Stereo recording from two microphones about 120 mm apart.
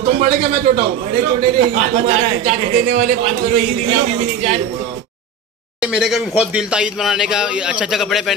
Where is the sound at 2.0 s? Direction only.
65° right (ahead or behind).